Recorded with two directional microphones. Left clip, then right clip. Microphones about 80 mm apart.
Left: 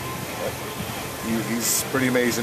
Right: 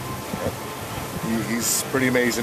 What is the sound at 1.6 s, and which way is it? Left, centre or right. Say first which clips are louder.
Speech: right 1 dB; right.